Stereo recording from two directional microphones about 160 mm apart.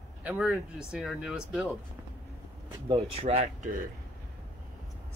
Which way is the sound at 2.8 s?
35° right (ahead or behind).